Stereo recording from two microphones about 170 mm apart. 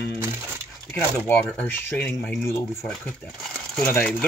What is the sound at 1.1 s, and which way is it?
Speech, 10° left (ahead or behind).